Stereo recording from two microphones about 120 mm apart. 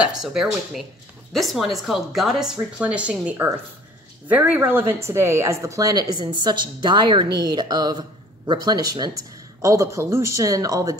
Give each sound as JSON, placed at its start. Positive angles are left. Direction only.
{"t": 0.0, "sound": "a woman's voice", "side_deg": -5}